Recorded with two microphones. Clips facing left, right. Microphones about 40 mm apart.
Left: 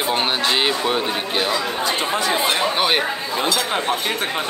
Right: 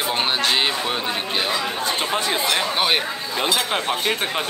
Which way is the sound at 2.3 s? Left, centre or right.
Left.